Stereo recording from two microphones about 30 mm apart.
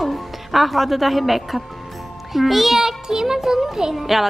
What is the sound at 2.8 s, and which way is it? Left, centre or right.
Music, centre.